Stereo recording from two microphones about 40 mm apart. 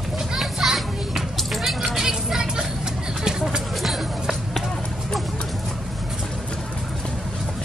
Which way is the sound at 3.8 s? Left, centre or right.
Centre.